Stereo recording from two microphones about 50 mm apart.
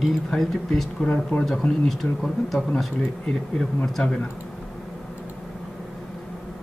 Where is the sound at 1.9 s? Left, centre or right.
Centre.